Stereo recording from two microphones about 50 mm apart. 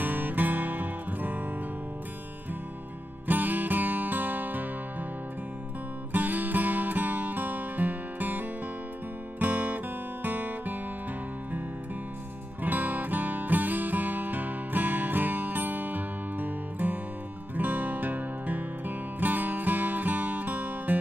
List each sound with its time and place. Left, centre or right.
0.0 s music: right
3.3 s music: right
6.1 s music: right
12.6 s music: right